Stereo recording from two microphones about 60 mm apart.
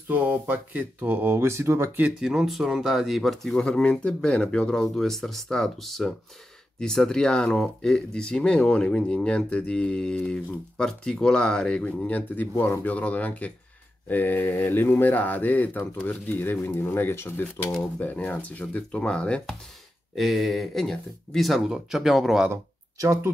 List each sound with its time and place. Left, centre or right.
0.1 s speech: right
2.1 s speech: centre; by 12.8 s left
12.8 s speech: left
17.9 s speech: left
20.2 s speech: centre